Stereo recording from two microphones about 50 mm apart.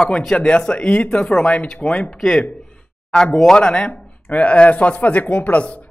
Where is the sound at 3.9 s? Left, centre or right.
Left.